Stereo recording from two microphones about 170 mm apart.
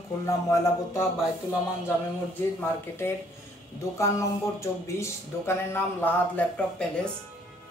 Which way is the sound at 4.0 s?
15° left (ahead or behind).